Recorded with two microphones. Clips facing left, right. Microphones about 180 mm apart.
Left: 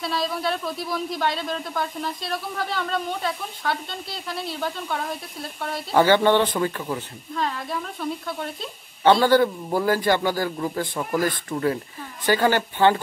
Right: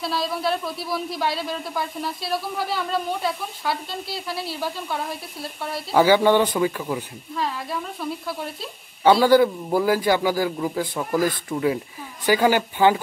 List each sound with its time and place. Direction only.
0.0 s a man's voice: centre (ahead or behind)